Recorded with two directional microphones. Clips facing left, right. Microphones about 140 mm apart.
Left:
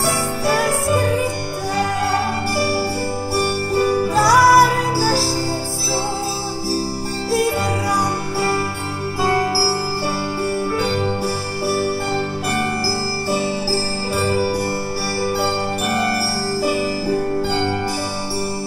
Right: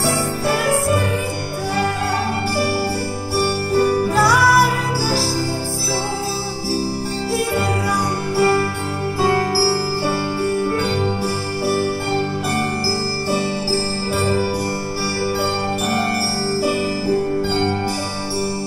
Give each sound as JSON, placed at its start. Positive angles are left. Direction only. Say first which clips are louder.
{"t": 4.3, "sound": "music", "louder": "left 7 dB", "side_deg": 40}